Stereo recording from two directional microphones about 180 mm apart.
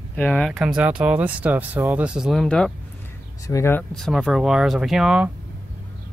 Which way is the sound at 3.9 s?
5° left (ahead or behind).